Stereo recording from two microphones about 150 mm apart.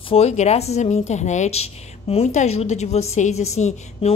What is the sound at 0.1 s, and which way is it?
Speech, 45° left (ahead or behind).